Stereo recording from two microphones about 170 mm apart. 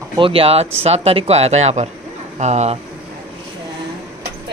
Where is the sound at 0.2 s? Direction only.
35° right (ahead or behind).